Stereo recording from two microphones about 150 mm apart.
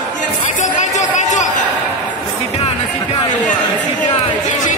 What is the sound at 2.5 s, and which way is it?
Music, 40° left (ahead or behind).